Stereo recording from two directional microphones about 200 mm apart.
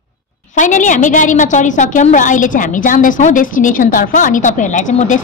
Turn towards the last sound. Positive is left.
turn(degrees=35)  # may be behind; listen again after turning